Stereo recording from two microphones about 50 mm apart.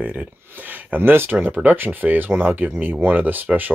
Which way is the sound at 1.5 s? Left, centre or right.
Right.